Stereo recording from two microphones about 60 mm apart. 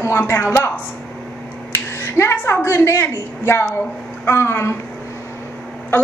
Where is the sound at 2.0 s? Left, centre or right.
Left.